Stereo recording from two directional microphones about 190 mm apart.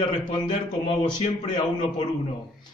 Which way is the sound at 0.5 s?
35° left (ahead or behind).